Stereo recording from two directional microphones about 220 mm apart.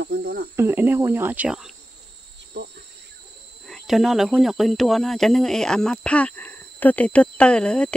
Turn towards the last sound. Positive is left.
turn(degrees=5)  # may be behind; listen again after turning